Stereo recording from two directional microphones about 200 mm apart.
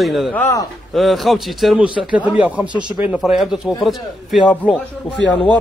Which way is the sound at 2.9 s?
5° right (ahead or behind).